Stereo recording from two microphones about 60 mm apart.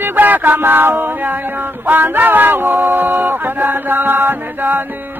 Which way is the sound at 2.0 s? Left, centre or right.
Right.